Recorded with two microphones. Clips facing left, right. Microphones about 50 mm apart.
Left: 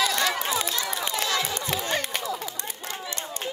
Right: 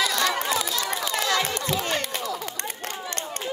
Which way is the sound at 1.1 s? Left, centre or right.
Right.